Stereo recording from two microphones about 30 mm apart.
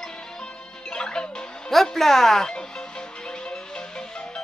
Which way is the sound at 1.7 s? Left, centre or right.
Centre.